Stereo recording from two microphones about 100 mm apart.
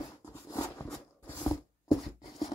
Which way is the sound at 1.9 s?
70° left (ahead or behind).